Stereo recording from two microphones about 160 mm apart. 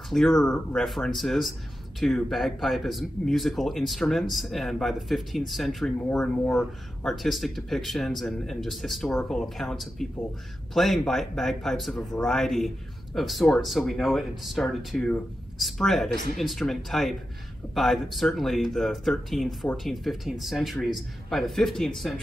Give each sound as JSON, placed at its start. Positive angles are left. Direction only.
{"t": 0.1, "sound": "speech", "side_deg": 0}